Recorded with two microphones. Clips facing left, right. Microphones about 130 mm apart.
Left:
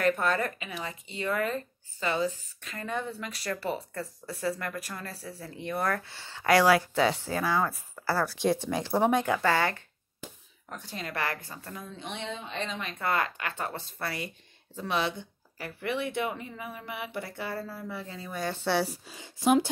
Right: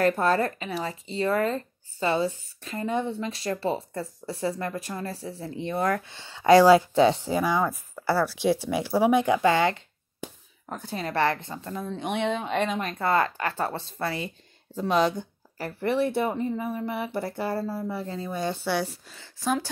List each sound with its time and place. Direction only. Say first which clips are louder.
0.0 s speech: right 4 dB; 35° right (ahead or behind)
7.2 s speech: right 4 dB; 15° right (ahead or behind)
10.7 s speech: right 6 dB; 40° right (ahead or behind)
12.0 s speech: right 11 dB; 60° right (ahead or behind)
13.0 s speech: right 5 dB; 35° right (ahead or behind)
18.6 s speech: left 3 dB; centre (ahead or behind)
19.0 s a woman's voice: left 3 dB; 15° left (ahead or behind)